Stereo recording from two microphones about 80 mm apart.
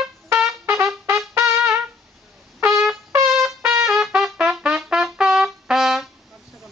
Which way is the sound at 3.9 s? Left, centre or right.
Centre.